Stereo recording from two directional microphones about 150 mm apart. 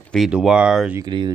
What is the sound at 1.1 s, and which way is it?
Speech, 30° right (ahead or behind).